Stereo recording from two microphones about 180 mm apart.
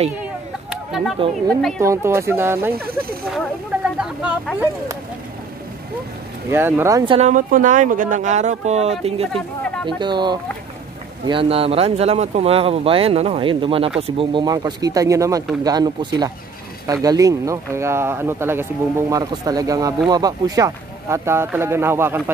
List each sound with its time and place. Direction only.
0.2 s a sound: 5° right (ahead or behind)
1.5 s speech: 5° left (ahead or behind)
1.8 s speech: 15° right (ahead or behind)
4.0 s speech: 5° right (ahead or behind)
6.5 s speech: 15° right (ahead or behind)
7.2 s speech: 45° right (ahead or behind); by 22.2 s 15° right (ahead or behind)